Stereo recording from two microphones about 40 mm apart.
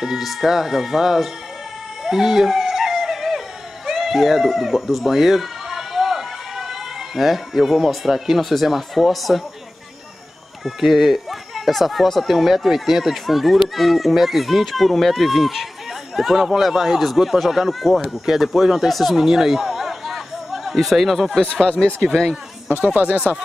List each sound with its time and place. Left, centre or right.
0.0 s speech: centre
2.0 s a sound: centre
10.6 s speech: centre
19.1 s a sound: centre
21.4 s speech: centre
22.9 s speech: right